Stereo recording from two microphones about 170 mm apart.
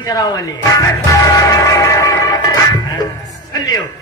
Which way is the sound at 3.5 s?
20° left (ahead or behind).